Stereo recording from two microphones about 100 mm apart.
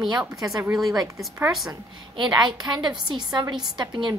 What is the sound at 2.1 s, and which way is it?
A woman's voice, 45° right (ahead or behind).